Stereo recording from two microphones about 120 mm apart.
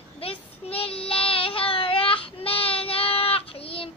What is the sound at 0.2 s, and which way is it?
Child singing, 50° left (ahead or behind).